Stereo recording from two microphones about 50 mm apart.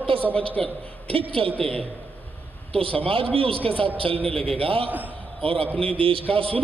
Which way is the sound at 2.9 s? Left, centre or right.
Left.